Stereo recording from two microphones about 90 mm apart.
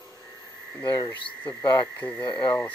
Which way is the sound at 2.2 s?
65° left (ahead or behind).